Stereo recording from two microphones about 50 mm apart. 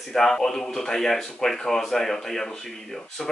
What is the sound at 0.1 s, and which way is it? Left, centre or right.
A man's voice, centre.